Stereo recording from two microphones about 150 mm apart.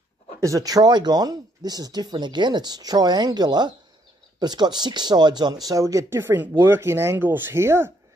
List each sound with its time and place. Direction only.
0.4 s speech: 20° right (ahead or behind)